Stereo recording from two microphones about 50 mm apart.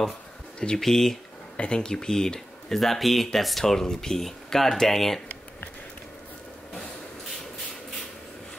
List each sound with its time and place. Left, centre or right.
0.6 s speech: centre
0.8 s speech: centre
1.6 s speech: centre